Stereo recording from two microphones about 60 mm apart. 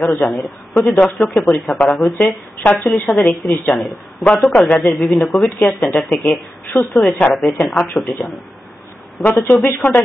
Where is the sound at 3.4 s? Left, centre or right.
Left.